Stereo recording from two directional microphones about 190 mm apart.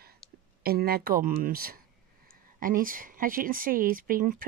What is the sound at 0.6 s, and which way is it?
Speech, 55° right (ahead or behind).